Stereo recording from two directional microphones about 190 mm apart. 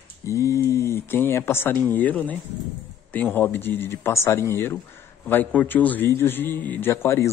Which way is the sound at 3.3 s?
10° left (ahead or behind).